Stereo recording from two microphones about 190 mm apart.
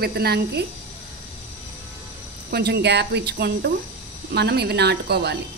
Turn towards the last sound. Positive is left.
turn(degrees=-60)  # may be behind; listen again after turning